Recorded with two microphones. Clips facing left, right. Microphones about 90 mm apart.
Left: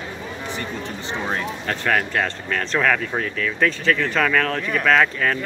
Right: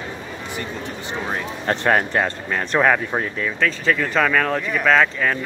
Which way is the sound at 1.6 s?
25° right (ahead or behind).